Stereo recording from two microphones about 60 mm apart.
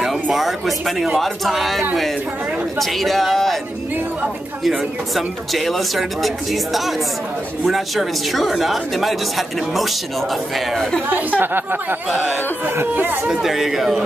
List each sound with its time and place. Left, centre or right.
0.0 s speech: centre
4.6 s speech: centre
11.1 s speech: right
13.3 s speech: centre